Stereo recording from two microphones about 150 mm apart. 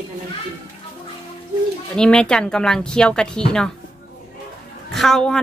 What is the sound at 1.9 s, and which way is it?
Speech, 5° left (ahead or behind).